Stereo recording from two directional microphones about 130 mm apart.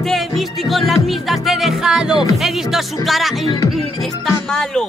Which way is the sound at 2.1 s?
35° left (ahead or behind).